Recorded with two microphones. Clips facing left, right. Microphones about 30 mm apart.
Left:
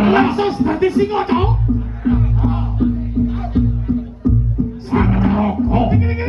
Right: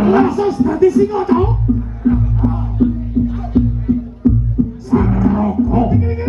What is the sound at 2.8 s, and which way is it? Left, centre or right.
Music, left.